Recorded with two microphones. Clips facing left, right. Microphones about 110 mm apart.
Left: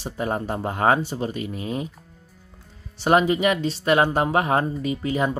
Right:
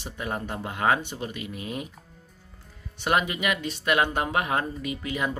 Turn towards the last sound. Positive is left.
turn(degrees=35)  # may be behind; listen again after turning